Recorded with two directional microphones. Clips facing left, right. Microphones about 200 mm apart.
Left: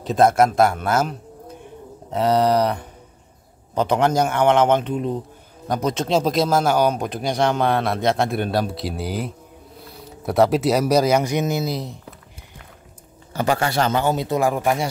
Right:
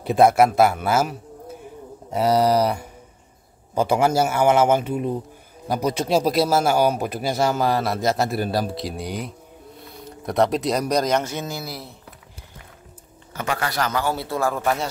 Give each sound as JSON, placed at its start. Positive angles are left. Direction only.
{"t": 0.0, "sound": "speech", "side_deg": -10}
{"t": 2.1, "sound": "speech", "side_deg": -10}
{"t": 13.3, "sound": "a man's voice", "side_deg": 30}